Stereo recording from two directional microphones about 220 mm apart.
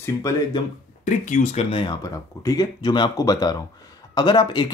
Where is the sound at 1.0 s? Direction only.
35° left (ahead or behind); by 4.7 s 20° left (ahead or behind).